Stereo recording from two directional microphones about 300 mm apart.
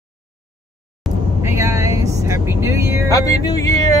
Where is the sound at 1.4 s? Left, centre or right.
Centre.